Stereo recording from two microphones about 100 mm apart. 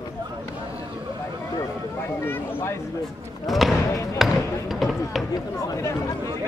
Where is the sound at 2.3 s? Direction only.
20° left (ahead or behind).